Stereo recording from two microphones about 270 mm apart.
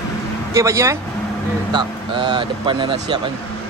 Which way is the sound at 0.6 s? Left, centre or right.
Centre.